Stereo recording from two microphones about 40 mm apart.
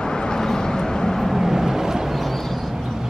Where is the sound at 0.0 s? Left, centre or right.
Centre.